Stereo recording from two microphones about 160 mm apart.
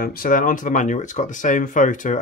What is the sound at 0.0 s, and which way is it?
Speech, 65° left (ahead or behind).